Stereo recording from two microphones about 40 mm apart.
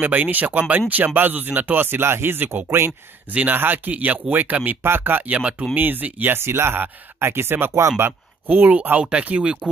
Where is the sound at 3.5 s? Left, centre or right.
Right.